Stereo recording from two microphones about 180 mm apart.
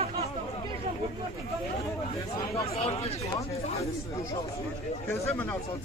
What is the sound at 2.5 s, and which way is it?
Speech, 35° left (ahead or behind).